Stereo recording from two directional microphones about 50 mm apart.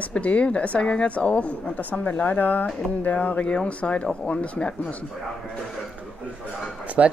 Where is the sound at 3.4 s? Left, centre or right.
Left.